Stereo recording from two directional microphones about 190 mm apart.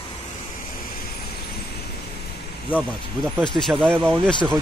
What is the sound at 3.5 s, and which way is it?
Speech, centre (ahead or behind).